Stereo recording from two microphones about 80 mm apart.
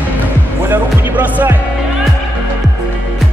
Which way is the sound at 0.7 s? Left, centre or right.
Right.